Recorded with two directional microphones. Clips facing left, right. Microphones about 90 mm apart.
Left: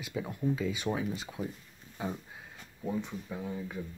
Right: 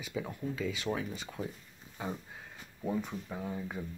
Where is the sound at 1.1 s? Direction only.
5° left (ahead or behind).